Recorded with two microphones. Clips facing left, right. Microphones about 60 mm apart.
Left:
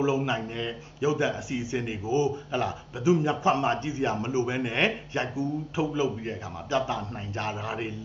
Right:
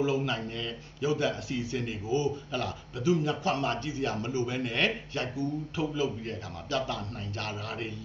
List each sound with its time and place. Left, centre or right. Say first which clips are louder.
0.0 s speech: left 3 dB; centre